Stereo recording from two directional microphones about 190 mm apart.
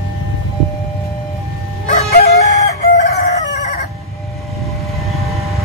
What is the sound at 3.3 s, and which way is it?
Chicken, 40° left (ahead or behind).